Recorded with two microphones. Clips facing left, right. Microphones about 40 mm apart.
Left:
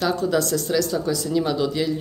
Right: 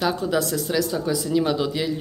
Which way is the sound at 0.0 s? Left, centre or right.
Centre.